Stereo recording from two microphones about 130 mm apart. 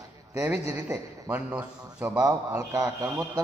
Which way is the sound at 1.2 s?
10° right (ahead or behind).